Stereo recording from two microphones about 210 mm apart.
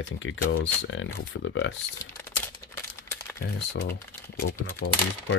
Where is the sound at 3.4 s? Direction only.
50° left (ahead or behind).